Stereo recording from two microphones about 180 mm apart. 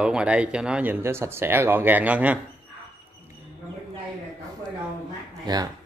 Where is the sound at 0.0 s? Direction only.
5° right (ahead or behind).